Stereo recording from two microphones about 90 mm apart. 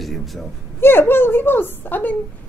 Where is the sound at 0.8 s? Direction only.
25° left (ahead or behind).